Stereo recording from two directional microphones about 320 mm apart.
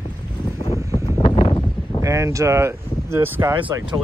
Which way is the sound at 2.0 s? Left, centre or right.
Centre.